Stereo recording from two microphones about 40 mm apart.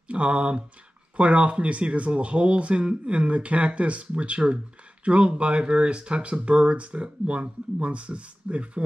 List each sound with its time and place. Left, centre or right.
0.1 s speech: right